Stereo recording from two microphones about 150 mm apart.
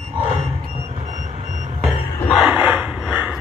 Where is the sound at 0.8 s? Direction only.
45° right (ahead or behind).